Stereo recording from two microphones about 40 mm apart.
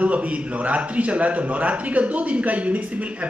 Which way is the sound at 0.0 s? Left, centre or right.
Right.